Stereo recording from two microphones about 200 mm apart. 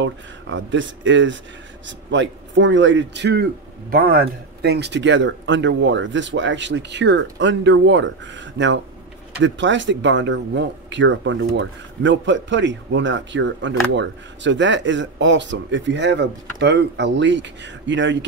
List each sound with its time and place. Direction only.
0.0 s speech: 65° right (ahead or behind)
3.9 s speech: 45° right (ahead or behind); by 18.2 s 65° right (ahead or behind)